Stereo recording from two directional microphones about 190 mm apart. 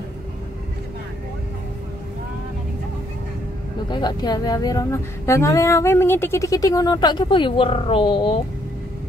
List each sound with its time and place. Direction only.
3.9 s speech: 20° left (ahead or behind)